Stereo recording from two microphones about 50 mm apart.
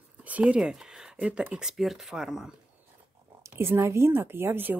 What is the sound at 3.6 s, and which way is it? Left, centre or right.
A woman's voice, right.